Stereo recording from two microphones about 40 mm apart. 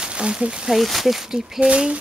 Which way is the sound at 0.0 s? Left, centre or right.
Right.